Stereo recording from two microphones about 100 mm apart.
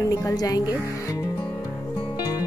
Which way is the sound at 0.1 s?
35° left (ahead or behind).